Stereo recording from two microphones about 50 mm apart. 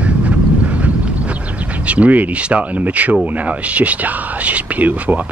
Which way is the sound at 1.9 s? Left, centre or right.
Right.